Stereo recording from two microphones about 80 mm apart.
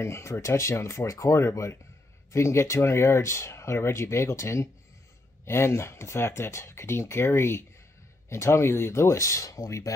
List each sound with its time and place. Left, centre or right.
0.0 s speech: left